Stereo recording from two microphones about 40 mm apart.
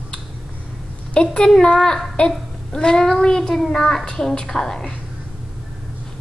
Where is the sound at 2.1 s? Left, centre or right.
Centre.